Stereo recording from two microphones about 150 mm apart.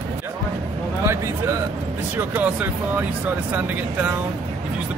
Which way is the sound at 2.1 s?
10° right (ahead or behind).